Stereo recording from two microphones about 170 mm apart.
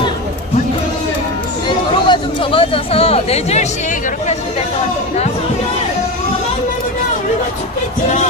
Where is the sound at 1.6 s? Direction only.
30° left (ahead or behind).